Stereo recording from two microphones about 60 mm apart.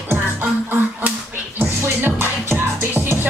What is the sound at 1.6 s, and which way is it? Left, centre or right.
Music, right.